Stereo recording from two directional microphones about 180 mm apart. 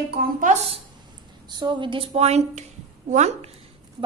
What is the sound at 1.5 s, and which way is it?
A woman's voice, 25° right (ahead or behind).